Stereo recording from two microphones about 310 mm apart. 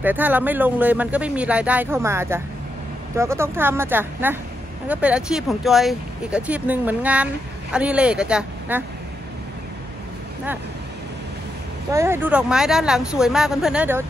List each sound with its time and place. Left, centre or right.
0.0 s speech: centre
11.9 s speech: centre